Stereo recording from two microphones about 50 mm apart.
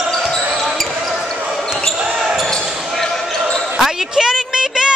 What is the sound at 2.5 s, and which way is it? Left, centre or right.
Basketball bounce, centre.